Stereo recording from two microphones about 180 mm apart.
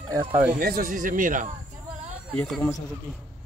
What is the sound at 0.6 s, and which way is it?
Speech, 55° right (ahead or behind).